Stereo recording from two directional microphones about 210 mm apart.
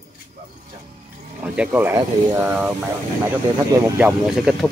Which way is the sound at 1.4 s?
5° right (ahead or behind).